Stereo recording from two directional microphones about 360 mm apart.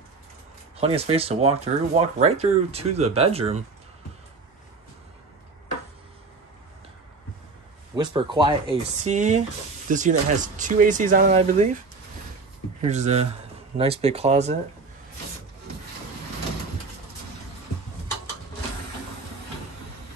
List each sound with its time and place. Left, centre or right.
0.7 s speech: centre
7.9 s speech: centre
12.8 s speech: centre